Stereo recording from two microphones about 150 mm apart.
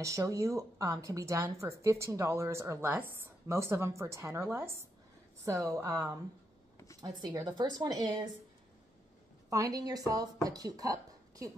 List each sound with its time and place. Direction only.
0.0 s speech: 20° right (ahead or behind)
9.5 s speech: 25° right (ahead or behind)